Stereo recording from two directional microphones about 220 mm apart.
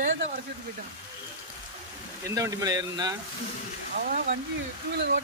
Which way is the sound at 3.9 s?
40° right (ahead or behind).